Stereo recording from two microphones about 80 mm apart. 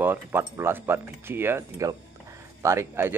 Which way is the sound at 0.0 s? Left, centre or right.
Right.